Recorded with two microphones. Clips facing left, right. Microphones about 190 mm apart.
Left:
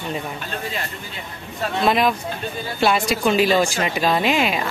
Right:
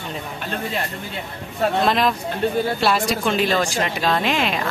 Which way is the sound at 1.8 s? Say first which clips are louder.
Left 5 dB; centre (ahead or behind).